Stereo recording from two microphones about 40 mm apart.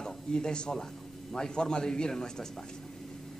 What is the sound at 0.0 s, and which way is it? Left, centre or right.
Speech, left.